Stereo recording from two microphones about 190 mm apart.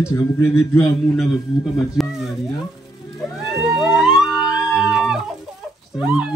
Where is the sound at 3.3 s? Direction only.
Centre (ahead or behind).